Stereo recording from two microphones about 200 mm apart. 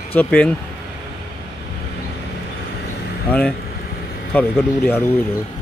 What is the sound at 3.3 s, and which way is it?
Speech, 5° left (ahead or behind).